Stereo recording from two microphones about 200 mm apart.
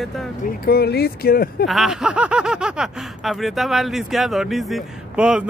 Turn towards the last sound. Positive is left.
turn(degrees=-5)  # may be behind; listen again after turning